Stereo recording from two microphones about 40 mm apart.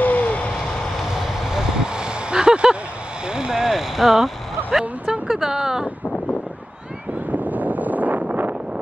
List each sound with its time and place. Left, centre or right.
0.0 s owl: left
1.1 s vehicle: centre; by 2.8 s right
3.3 s a sound: centre
3.6 s a sound: centre
5.3 s speech: centre
7.2 s wind noise: right